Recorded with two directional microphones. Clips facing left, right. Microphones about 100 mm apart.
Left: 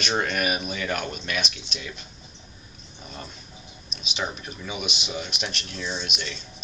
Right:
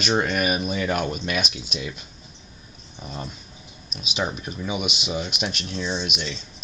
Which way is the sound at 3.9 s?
10° right (ahead or behind).